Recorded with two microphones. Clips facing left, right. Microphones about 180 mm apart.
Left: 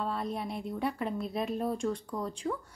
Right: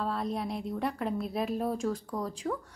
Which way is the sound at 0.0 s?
Centre (ahead or behind).